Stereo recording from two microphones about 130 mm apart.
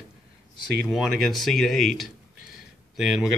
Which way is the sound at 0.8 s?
Centre (ahead or behind).